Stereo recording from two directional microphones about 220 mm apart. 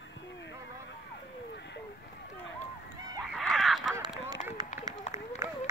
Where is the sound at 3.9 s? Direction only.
15° right (ahead or behind).